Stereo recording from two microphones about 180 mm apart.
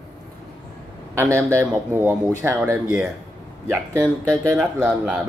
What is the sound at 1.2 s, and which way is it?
A man's voice, 15° right (ahead or behind).